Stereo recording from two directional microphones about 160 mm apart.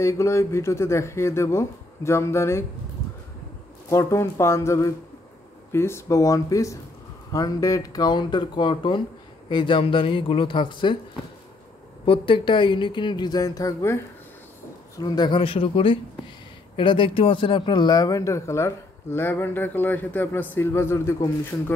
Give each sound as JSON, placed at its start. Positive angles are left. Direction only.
{"t": 0.0, "sound": "speech", "side_deg": 15}
{"t": 3.9, "sound": "speech", "side_deg": 20}
{"t": 12.1, "sound": "speech", "side_deg": 30}
{"t": 15.0, "sound": "speech", "side_deg": 25}